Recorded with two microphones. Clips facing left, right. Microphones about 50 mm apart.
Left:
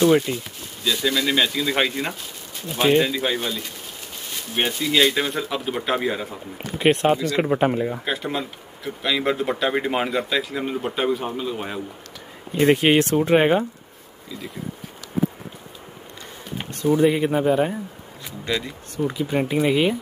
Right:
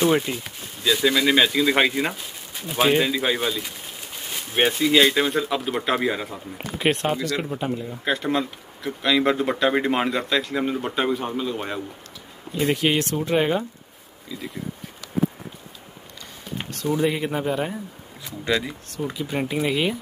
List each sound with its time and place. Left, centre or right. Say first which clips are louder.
0.0 s speech: left 3 dB; centre
4.6 s speech: right 3 dB; centre
5.1 s speech: right 2 dB; centre
7.4 s speech: left 7 dB; left
8.0 s speech: right 3 dB; centre
12.5 s speech: left 5 dB; left
16.5 s speech: left 4 dB; centre